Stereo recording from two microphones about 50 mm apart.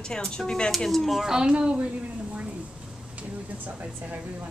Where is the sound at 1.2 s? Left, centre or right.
Centre.